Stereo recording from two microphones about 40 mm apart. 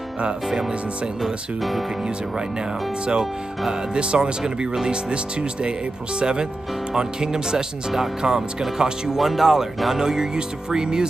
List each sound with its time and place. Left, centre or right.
0.5 s speech: centre
1.2 s speech: centre
3.7 s speech: right
9.2 s speech: centre